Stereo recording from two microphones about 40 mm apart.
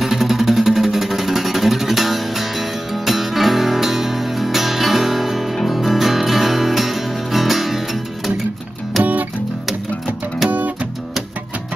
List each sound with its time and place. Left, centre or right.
0.0 s music: centre
10.5 s music: right